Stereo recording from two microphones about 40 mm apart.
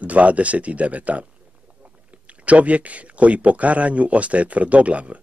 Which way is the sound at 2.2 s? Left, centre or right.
Right.